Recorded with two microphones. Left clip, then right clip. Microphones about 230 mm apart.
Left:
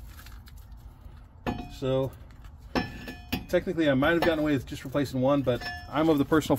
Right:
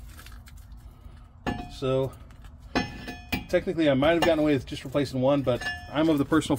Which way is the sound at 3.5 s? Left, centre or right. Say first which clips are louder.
Right 1 dB; centre.